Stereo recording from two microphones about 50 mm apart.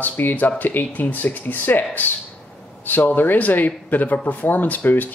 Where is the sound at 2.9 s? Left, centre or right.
Left.